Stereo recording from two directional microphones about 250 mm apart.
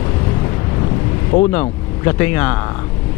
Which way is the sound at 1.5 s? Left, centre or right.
Centre.